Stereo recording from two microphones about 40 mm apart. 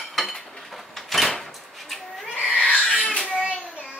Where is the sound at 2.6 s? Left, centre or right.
Left.